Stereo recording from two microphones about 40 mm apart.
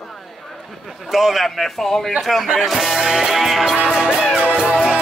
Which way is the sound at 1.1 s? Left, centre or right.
Centre.